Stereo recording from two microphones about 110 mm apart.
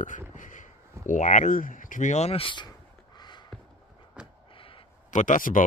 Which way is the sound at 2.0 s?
80° left.